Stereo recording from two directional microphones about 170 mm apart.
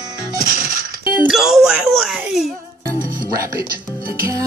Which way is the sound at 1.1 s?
5° right (ahead or behind).